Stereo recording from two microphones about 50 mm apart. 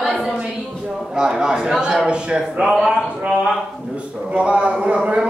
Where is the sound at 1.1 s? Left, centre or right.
Centre.